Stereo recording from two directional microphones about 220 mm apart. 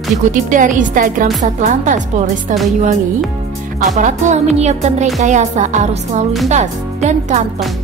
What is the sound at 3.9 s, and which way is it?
Speech, 35° right (ahead or behind).